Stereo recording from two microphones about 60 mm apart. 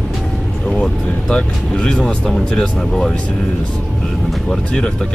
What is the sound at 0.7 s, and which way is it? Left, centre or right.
Speech, centre.